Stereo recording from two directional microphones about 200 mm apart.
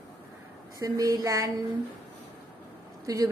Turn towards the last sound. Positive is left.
turn(degrees=-15)  # may be behind; listen again after turning